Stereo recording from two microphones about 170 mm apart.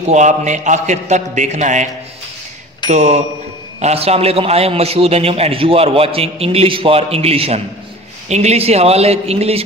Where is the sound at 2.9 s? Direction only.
40° right (ahead or behind).